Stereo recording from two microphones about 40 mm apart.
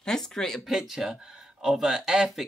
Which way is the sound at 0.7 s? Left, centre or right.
Centre.